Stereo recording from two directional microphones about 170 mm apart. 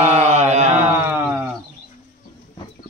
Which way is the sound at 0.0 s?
40° right (ahead or behind).